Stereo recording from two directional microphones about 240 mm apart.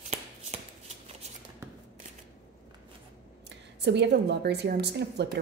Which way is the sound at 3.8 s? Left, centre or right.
Right.